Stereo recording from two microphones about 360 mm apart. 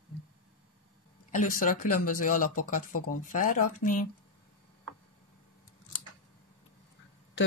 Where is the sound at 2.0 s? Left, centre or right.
Left.